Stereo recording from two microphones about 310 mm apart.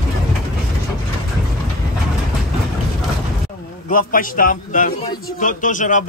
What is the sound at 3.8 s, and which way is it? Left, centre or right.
A man's voice, left.